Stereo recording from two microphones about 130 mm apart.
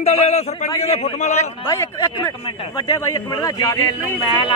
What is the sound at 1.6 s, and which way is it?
Speech, 25° left (ahead or behind).